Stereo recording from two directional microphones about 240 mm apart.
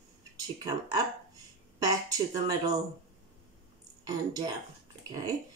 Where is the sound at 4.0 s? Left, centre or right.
Centre.